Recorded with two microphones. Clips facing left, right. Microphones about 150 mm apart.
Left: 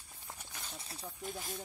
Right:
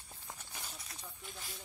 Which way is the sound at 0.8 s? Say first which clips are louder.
Left 6 dB; 30° left (ahead or behind).